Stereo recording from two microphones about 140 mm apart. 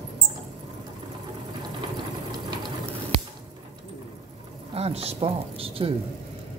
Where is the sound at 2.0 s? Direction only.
30° right (ahead or behind).